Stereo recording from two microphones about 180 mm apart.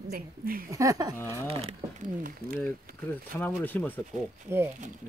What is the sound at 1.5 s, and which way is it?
Speech, 30° right (ahead or behind).